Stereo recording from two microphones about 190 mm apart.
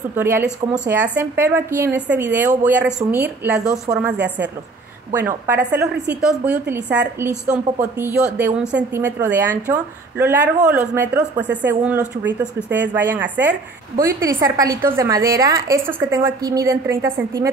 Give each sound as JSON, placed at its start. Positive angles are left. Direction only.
{"t": 0.1, "sound": "a woman's voice", "side_deg": -10}
{"t": 5.1, "sound": "a woman's voice", "side_deg": -10}